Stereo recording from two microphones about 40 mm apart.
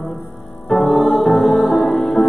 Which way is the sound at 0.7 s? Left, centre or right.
Centre.